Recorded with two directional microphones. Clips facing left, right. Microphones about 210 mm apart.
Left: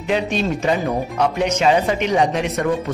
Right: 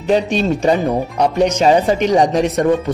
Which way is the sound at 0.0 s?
35° right (ahead or behind).